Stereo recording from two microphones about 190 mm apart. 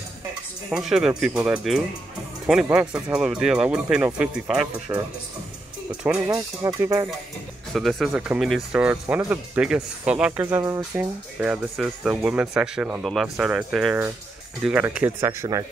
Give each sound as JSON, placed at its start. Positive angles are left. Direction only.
{"t": 0.7, "sound": "speech", "side_deg": -5}
{"t": 6.0, "sound": "speech", "side_deg": -5}
{"t": 6.3, "sound": "speech", "side_deg": -15}
{"t": 7.7, "sound": "speech", "side_deg": 0}